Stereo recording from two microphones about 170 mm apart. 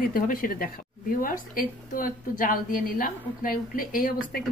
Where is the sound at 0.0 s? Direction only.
55° left (ahead or behind).